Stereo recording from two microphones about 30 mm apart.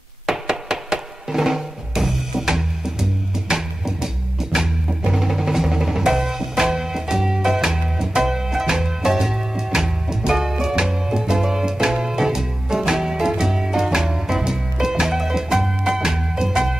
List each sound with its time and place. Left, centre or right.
0.5 s drum: right
5.1 s music: centre